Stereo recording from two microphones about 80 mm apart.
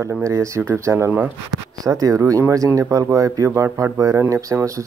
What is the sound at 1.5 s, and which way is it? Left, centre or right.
Speech, right.